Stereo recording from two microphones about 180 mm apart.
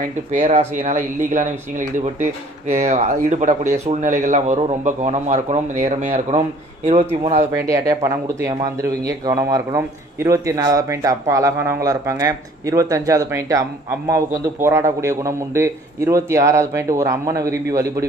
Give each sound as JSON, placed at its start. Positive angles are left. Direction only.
{"t": 0.3, "sound": "speech", "side_deg": -40}
{"t": 7.5, "sound": "speech", "side_deg": -20}